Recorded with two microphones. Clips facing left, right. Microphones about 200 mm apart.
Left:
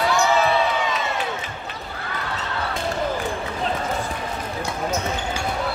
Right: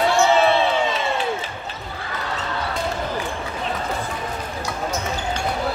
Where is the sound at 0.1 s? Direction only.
30° right (ahead or behind).